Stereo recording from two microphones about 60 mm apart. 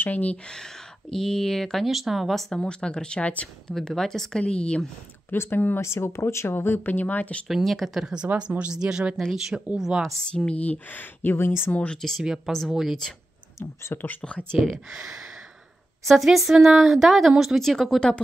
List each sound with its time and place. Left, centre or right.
0.0 s speech: left
1.1 s speech: centre
2.5 s speech: centre
3.6 s speech: centre
5.3 s speech: left
7.4 s speech: centre
8.0 s speech: centre
10.3 s speech: centre; by 11.7 s left
11.7 s speech: left
12.2 s speech: centre
13.9 s speech: left
14.5 s speech: centre
16.1 s speech: centre
17.6 s speech: centre